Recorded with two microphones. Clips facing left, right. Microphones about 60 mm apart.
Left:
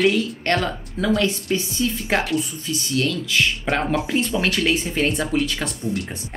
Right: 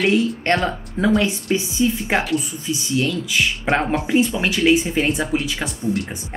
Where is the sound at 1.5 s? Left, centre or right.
Centre.